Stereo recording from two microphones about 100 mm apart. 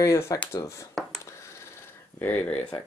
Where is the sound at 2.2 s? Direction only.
15° left (ahead or behind).